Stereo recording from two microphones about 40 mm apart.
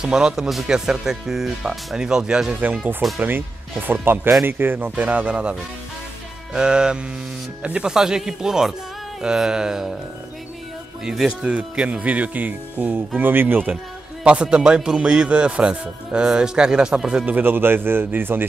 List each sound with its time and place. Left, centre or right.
0.0 s speech: centre
2.0 s a man's voice: right
2.6 s speech: right
4.9 s speech: right
6.5 s a man's voice: right
7.9 s speech: centre
11.5 s speech: right
13.2 s speech: right
14.2 s a man's voice: right
17.3 s speech: right